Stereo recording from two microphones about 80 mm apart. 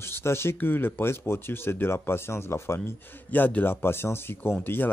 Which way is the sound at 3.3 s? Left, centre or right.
Left.